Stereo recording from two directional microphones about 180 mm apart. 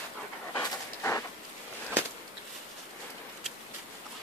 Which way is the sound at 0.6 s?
15° left (ahead or behind).